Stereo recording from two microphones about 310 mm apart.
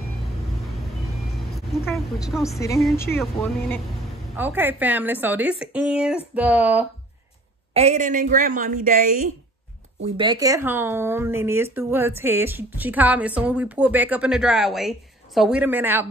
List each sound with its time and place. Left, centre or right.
1.9 s a woman's voice: centre
4.4 s speech: centre
7.7 s a woman's voice: right
10.0 s speech: centre